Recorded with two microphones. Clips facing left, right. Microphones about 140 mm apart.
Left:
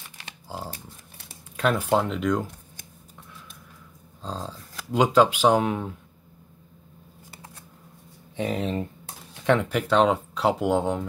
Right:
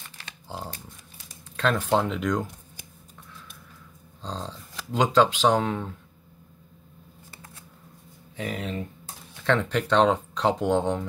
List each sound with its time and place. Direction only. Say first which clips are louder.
0.5 s a sound: left 1 dB; 5° left (ahead or behind)
1.6 s speech: left 1 dB; 10° left (ahead or behind)
4.2 s speech: left 1 dB; 5° left (ahead or behind)
8.4 s speech: left 5 dB; 25° left (ahead or behind)
9.4 s speech: left 2 dB; 15° left (ahead or behind)